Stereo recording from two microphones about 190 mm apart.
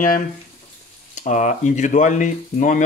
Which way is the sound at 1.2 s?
40° left (ahead or behind).